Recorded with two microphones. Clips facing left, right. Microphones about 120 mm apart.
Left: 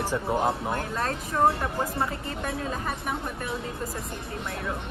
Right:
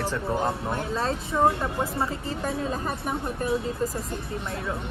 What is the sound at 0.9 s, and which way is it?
Speech, 30° right (ahead or behind).